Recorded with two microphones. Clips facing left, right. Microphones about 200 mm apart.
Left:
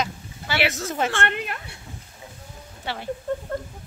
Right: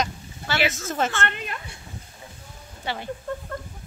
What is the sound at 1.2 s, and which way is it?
Speech, 60° left (ahead or behind).